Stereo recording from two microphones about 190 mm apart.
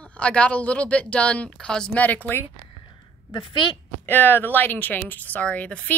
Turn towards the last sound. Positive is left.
turn(degrees=5)  # may be behind; listen again after turning